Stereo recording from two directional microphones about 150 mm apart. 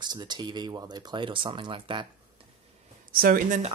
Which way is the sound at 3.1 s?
75° right (ahead or behind).